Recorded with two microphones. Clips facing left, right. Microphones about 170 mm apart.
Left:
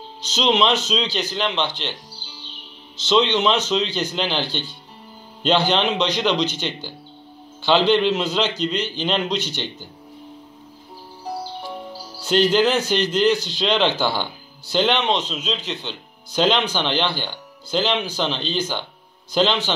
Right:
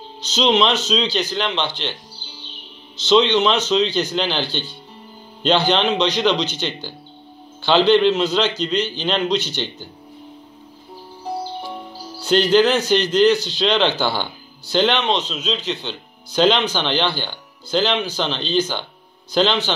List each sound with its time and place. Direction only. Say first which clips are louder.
0.3 s speech: right 2 dB; 5° left (ahead or behind)
3.1 s speech: right 3 dB; 10° left (ahead or behind)
5.4 s speech: right 1 dB; 10° left (ahead or behind)
6.3 s speech: left 1 dB; 50° left (ahead or behind)
7.6 s speech: right 3 dB; 10° left (ahead or behind)
9.3 s speech: right 4 dB; 50° left (ahead or behind)
12.2 s speech: right 2 dB; 5° left (ahead or behind)